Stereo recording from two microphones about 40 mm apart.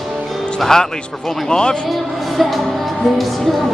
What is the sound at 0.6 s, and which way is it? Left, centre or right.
Speech, centre.